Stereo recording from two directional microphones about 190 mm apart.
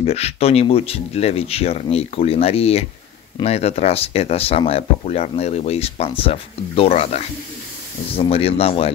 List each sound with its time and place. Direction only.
0.0 s speech: 35° left (ahead or behind)